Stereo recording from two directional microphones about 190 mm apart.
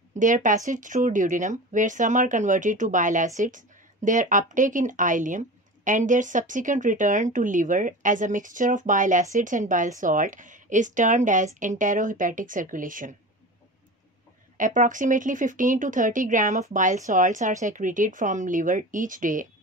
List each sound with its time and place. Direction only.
0.1 s speech: 40° right (ahead or behind)
14.6 s speech: 45° right (ahead or behind)